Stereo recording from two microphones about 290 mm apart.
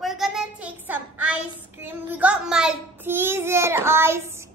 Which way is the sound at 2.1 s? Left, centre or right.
Centre.